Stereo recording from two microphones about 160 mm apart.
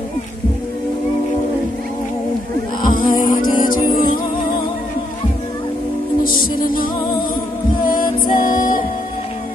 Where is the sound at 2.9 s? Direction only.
60° left (ahead or behind).